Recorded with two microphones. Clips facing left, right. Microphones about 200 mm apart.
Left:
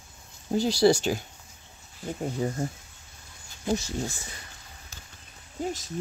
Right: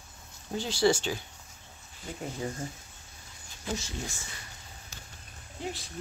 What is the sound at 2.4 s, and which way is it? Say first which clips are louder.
Speech: left 5 dB; 35° left (ahead or behind).